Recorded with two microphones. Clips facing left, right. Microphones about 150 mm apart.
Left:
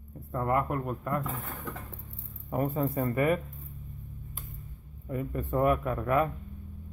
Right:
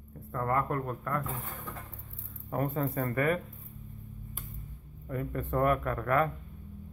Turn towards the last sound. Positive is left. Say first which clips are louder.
# left 1 dB
turn(degrees=10)  # may be behind; listen again after turning